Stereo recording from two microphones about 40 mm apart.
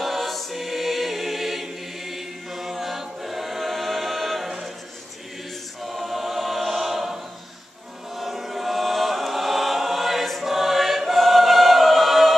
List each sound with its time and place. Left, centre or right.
0.0 s choir: centre
5.8 s choir: centre
8.2 s chant: centre